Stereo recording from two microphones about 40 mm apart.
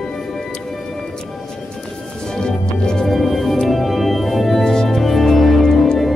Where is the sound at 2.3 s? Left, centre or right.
Centre.